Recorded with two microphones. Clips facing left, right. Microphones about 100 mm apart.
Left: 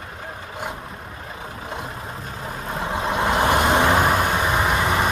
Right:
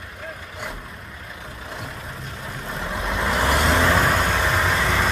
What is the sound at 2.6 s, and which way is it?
Vehicle, 30° left (ahead or behind).